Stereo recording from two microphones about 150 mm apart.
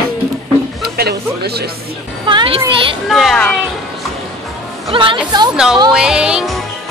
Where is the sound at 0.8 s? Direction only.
90° right.